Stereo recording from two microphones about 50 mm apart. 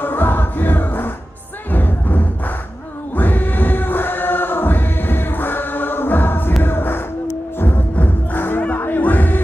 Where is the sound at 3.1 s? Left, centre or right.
Left.